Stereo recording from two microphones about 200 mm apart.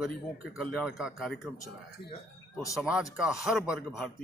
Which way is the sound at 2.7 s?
5° right (ahead or behind).